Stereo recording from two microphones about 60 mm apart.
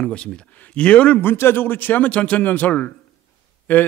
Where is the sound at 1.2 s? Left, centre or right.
Left.